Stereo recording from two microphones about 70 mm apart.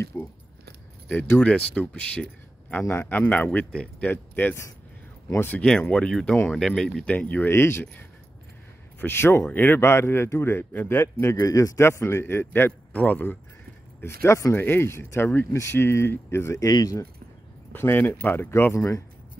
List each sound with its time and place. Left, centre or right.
0.1 s speech: left
1.4 s speech: centre
2.8 s speech: left
3.1 s speech: left
5.6 s speech: centre
7.2 s speech: left
7.4 s speech: left
9.0 s speech: left
10.9 s speech: left
12.9 s speech: left
14.0 s speech: left
16.6 s speech: left
17.7 s speech: left